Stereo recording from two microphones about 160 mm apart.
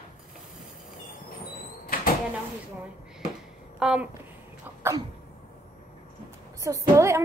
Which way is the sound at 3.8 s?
5° right (ahead or behind).